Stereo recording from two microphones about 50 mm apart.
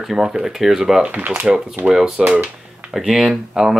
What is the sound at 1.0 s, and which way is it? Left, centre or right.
Speech, right.